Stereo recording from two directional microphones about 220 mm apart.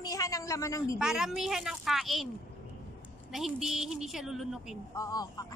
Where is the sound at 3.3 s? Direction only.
Centre (ahead or behind).